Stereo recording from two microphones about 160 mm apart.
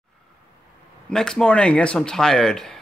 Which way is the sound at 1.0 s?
5° left (ahead or behind).